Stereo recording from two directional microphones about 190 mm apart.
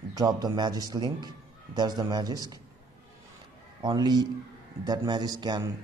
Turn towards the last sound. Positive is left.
turn(degrees=-20)  # may be behind; listen again after turning